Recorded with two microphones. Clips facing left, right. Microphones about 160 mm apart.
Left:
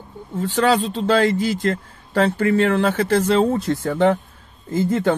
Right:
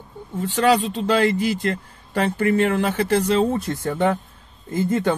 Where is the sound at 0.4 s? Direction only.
40° left (ahead or behind).